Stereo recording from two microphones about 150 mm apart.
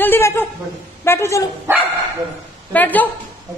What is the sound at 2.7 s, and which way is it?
Speech, 10° left (ahead or behind).